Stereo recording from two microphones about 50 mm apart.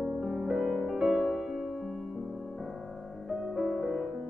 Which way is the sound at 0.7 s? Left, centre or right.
Centre.